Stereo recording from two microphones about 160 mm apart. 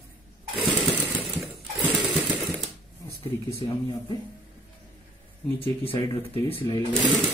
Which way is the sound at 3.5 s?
40° left (ahead or behind).